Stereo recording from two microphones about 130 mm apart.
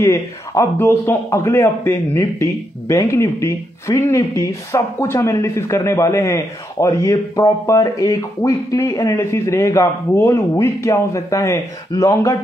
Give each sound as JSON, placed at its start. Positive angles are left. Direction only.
{"t": 0.0, "sound": "a man's voice", "side_deg": 25}